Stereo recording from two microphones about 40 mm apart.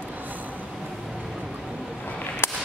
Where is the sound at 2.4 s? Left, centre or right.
Left.